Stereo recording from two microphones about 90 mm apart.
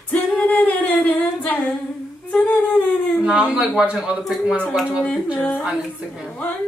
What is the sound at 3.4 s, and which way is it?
Speech, 15° right (ahead or behind).